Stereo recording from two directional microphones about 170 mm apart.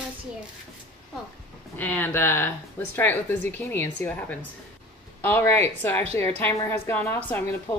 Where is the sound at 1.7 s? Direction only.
10° left (ahead or behind).